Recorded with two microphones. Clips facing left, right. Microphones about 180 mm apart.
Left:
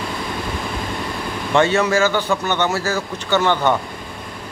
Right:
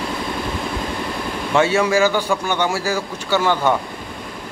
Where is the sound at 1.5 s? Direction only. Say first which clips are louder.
Even; 10° right (ahead or behind).